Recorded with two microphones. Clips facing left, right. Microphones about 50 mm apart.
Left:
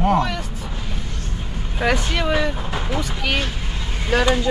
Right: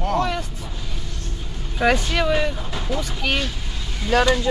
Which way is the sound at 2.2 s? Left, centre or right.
Left.